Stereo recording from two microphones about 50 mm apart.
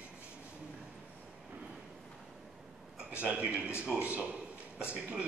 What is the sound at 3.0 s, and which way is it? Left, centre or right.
A man's voice, right.